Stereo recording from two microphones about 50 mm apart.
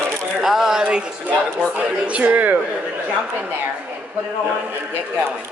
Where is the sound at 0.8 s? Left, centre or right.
Right.